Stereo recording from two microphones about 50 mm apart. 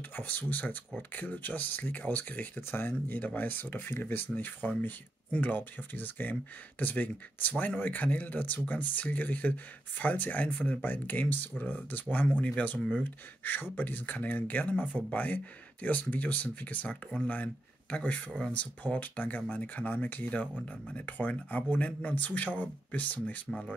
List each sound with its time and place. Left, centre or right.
0.1 s speech: left
2.7 s speech: left